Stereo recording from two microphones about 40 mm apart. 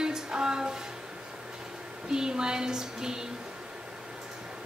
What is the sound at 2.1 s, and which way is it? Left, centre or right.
A woman's voice, centre.